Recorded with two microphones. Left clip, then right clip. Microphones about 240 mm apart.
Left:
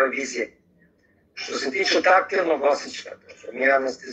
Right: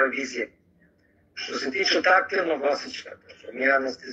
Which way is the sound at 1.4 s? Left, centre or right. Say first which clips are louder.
Left 2 dB; left.